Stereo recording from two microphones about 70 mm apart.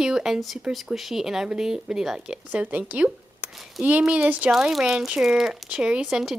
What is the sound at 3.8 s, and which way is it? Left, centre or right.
Speech, centre.